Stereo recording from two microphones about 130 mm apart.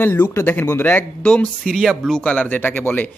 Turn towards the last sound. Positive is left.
turn(degrees=15)  # may be behind; listen again after turning